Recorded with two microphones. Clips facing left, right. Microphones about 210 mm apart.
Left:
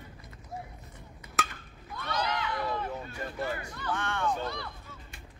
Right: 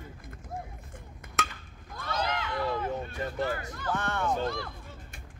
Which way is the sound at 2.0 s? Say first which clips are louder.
Even; 45° right (ahead or behind).